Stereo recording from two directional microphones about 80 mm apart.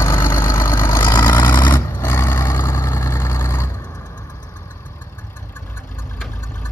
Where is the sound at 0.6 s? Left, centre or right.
Left.